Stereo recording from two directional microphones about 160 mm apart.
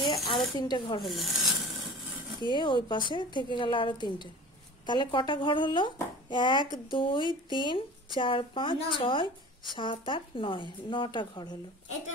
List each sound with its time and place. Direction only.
0.0 s a sound: 25° left (ahead or behind)
0.6 s rub: 30° left (ahead or behind)
1.0 s rub: centre (ahead or behind)
2.4 s speech: 30° left (ahead or behind)